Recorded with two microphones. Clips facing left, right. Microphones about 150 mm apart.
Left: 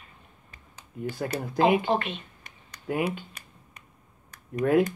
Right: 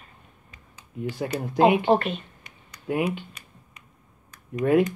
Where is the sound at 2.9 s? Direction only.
Centre (ahead or behind).